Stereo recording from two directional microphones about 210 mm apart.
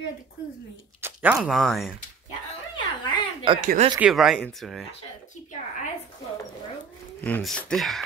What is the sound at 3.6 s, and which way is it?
Speech, 35° right (ahead or behind).